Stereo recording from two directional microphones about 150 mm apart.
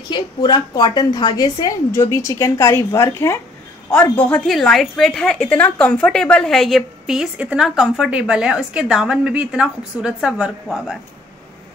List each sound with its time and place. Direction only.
0.1 s a woman's voice: 30° left (ahead or behind)
4.3 s a woman's voice: centre (ahead or behind)